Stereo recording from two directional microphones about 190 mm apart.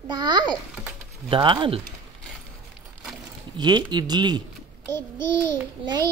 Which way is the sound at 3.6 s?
20° right (ahead or behind).